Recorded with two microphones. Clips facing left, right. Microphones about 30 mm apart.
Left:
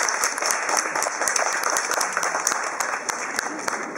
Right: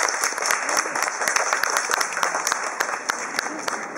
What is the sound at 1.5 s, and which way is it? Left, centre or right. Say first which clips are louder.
Applause: right 1 dB; right.